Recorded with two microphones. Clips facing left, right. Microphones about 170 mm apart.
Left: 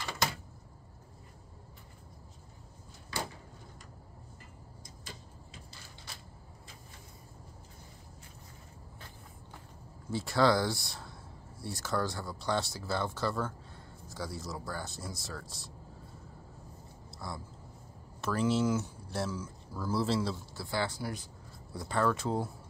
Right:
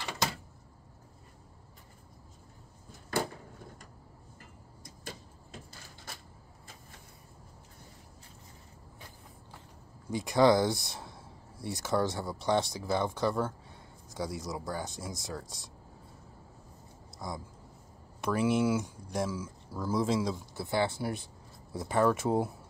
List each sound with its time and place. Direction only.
3.1 s a sound: 50° right (ahead or behind)
10.1 s speech: 20° right (ahead or behind)
17.2 s speech: 15° right (ahead or behind)